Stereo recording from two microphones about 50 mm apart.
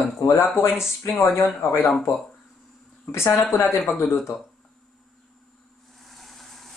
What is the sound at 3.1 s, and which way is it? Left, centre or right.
Speech, left.